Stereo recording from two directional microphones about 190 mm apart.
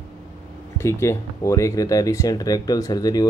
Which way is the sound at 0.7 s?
15° left (ahead or behind).